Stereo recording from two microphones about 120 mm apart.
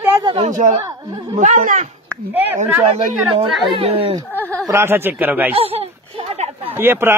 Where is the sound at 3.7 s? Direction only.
50° right (ahead or behind).